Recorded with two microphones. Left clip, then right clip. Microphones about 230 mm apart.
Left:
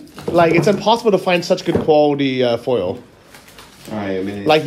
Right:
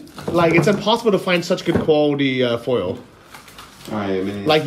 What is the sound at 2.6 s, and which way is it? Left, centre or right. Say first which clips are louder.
Speech: left 2 dB; left.